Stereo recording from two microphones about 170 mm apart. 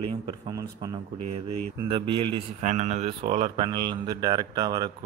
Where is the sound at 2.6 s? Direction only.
45° right (ahead or behind).